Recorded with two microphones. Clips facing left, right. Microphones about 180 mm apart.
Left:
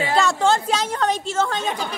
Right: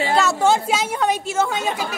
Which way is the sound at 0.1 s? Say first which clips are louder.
Right 1 dB; 5° right (ahead or behind).